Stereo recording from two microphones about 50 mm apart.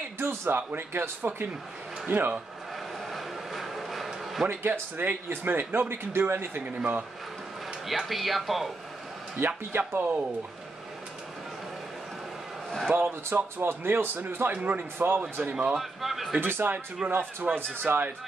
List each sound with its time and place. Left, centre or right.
0.2 s speech: right
3.1 s a sound: centre
4.5 s speech: right
6.6 s speech: right
7.8 s speech: centre
9.7 s speech: right
12.9 s speech: right
15.0 s speech: right
15.5 s a man's voice: centre
15.8 s speech: centre
16.3 s speech: right